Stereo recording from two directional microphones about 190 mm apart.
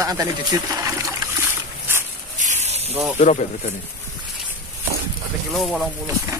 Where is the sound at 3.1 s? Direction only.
40° left (ahead or behind).